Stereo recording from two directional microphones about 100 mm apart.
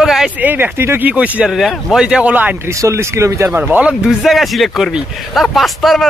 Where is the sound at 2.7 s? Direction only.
30° right (ahead or behind).